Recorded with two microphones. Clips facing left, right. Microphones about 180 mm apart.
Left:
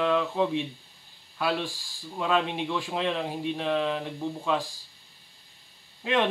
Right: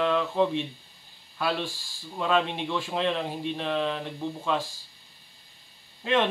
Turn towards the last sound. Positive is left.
turn(degrees=5)  # may be behind; listen again after turning